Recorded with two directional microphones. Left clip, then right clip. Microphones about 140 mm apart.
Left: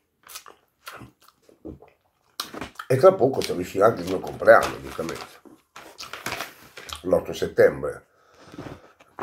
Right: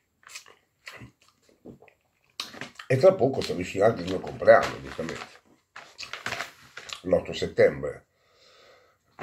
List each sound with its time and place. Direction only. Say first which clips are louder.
2.3 s a sound: left 4 dB; 15° right (ahead or behind)
3.3 s speech: left 3 dB; 10° left (ahead or behind)
3.5 s speech: left 3 dB; 15° right (ahead or behind)
5.0 s drawer open or close: left 3 dB; 15° left (ahead or behind)
6.2 s a sound: left 2 dB; 10° left (ahead or behind)
6.9 s speech: left 2 dB; 15° right (ahead or behind)